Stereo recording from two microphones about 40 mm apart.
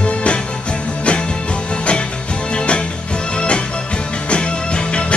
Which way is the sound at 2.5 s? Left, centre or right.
Left.